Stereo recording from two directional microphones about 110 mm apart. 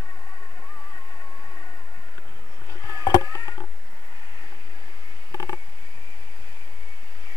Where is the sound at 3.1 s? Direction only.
35° left (ahead or behind).